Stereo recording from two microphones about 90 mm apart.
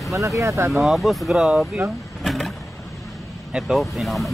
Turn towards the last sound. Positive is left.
turn(degrees=0)  # may be behind; listen again after turning